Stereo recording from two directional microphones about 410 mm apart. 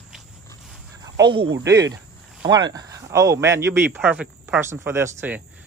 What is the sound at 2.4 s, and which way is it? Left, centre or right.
Speech, centre.